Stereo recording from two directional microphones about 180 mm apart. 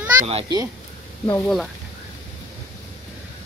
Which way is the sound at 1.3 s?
Centre (ahead or behind).